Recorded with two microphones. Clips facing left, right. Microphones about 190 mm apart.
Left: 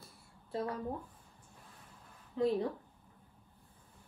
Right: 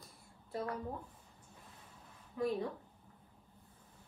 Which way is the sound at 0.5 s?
25° left (ahead or behind).